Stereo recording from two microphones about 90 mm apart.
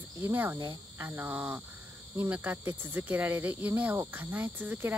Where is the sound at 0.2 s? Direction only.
25° right (ahead or behind).